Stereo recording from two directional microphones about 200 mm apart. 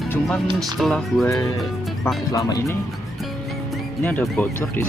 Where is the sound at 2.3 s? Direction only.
15° left (ahead or behind).